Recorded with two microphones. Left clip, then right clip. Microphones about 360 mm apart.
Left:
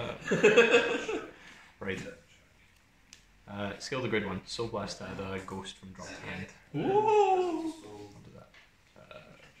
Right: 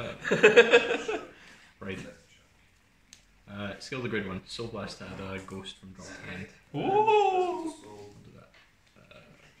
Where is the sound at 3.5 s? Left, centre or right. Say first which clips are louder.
Left 2 dB; centre.